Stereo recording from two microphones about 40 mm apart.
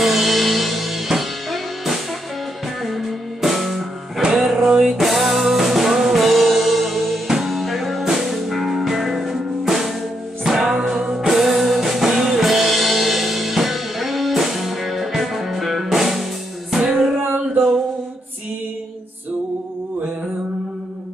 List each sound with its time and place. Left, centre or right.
0.0 s music: centre